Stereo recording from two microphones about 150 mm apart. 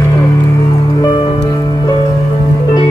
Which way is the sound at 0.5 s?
25° left (ahead or behind).